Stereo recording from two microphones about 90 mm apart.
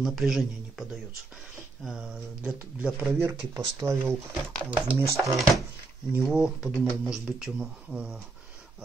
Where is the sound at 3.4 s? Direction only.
40° right (ahead or behind).